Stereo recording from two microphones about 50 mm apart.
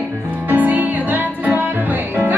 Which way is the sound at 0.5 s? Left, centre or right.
Right.